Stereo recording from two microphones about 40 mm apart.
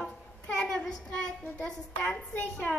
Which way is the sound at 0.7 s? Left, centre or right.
Left.